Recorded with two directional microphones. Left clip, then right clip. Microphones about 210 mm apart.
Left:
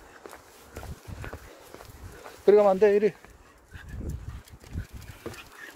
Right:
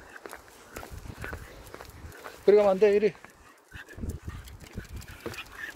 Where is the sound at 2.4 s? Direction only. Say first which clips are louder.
Left 1 dB; 20° left (ahead or behind).